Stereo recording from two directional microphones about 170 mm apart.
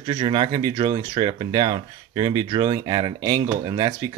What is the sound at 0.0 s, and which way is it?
Speech, 30° right (ahead or behind).